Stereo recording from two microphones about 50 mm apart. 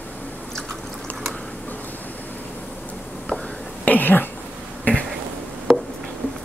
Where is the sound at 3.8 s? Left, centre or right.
Left.